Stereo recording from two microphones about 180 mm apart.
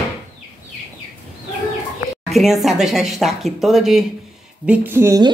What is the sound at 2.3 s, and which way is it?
Speech, centre (ahead or behind).